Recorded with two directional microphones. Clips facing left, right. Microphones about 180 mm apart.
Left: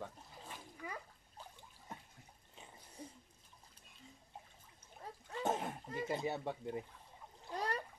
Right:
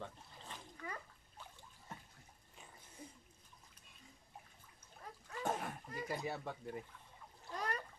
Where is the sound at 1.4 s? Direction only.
35° left (ahead or behind).